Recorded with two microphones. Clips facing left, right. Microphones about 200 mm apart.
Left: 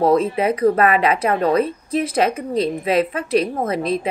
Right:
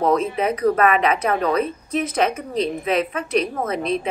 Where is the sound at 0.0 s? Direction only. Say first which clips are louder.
Left 3 dB; 35° left (ahead or behind).